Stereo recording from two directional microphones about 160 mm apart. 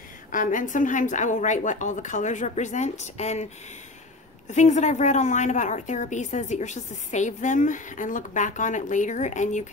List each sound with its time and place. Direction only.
0.3 s a woman's voice: 55° left (ahead or behind)
4.5 s a woman's voice: 45° left (ahead or behind)